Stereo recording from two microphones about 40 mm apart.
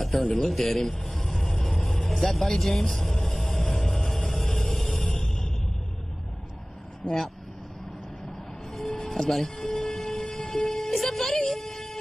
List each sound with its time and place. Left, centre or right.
0.2 s a man's voice: centre
0.5 s speech: centre
1.6 s vehicle: centre
5.1 s music: centre
8.8 s siren: centre
10.4 s a sound: centre